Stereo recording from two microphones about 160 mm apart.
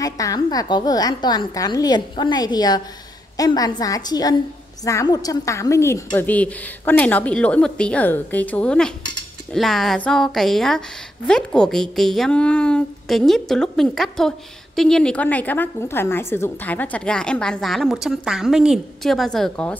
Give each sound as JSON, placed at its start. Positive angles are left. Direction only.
{"t": 0.0, "sound": "a woman's voice", "side_deg": 20}